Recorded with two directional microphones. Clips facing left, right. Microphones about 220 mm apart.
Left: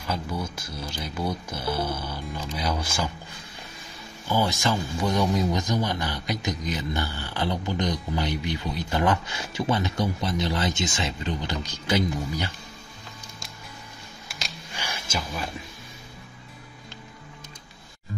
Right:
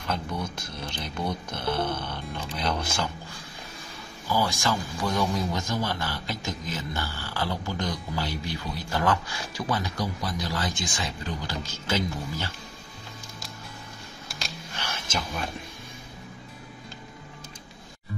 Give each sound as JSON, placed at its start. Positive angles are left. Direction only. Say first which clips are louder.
{"t": 0.0, "sound": "speech", "louder": "left 1 dB", "side_deg": 5}
{"t": 4.3, "sound": "a man's voice", "louder": "left 2 dB", "side_deg": 20}
{"t": 14.4, "sound": "a sound", "louder": "even", "side_deg": 10}